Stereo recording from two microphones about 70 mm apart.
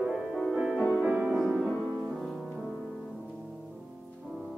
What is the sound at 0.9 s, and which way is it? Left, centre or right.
Music, right.